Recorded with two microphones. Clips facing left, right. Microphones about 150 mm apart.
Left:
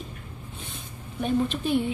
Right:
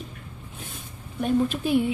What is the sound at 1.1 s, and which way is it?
Speech, 5° right (ahead or behind).